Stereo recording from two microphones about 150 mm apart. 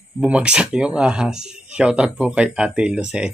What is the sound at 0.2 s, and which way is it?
Speech, 10° right (ahead or behind).